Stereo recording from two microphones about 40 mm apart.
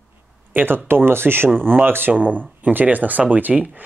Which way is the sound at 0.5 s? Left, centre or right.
Right.